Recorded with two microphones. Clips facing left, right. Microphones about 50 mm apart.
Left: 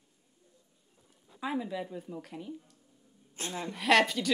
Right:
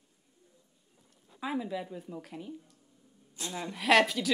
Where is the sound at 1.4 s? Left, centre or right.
Centre.